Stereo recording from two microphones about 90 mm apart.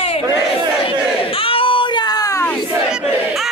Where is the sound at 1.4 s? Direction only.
85° left; by 2.3 s 50° left (ahead or behind).